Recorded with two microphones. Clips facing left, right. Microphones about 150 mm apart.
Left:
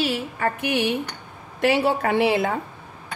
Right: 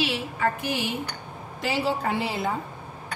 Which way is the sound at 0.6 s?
60° left (ahead or behind).